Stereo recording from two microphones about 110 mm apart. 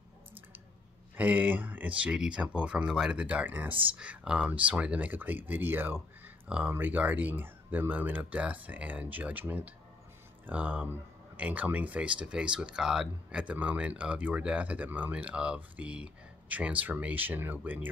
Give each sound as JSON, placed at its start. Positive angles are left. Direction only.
{"t": 1.1, "sound": "speech", "side_deg": -15}